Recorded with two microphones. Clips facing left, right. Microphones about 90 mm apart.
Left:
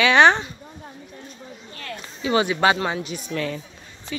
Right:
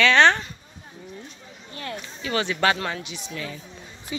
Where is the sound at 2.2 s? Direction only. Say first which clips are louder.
Left 5 dB; 20° left (ahead or behind).